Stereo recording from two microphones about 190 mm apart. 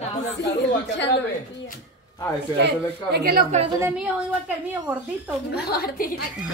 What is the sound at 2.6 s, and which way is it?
Speech, 60° right (ahead or behind).